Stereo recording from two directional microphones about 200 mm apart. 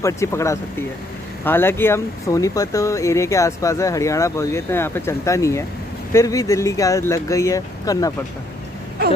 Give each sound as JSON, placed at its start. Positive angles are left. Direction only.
{"t": 0.0, "sound": "speech", "side_deg": 15}